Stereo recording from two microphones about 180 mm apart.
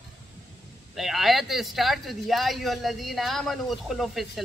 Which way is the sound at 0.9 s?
Centre (ahead or behind).